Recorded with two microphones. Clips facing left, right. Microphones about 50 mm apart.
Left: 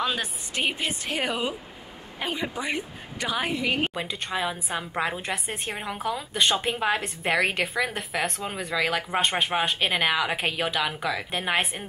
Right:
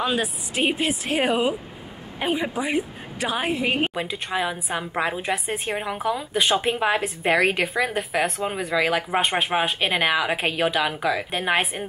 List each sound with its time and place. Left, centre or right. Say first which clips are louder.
0.0 s a woman's voice: right 4 dB; centre
3.5 s a woman's voice: right 3 dB; right
3.8 s a woman's voice: right 3 dB; centre